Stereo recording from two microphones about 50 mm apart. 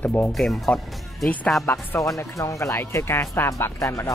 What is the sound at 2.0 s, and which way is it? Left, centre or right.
Speech, left.